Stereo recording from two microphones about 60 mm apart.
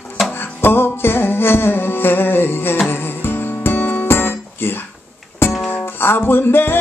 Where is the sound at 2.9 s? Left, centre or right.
Left.